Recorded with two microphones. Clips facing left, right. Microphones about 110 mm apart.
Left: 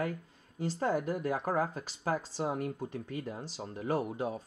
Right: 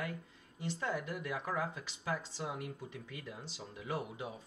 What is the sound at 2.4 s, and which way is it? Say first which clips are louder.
Speech: left 8 dB; 45° left (ahead or behind).